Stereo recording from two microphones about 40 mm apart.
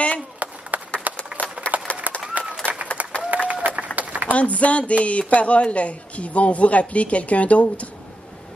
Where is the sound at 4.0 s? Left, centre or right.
Right.